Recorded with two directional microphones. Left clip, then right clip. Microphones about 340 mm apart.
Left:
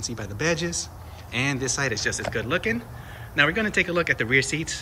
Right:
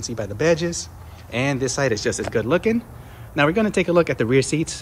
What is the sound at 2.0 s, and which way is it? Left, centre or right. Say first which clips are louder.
Speech: right 3 dB; right.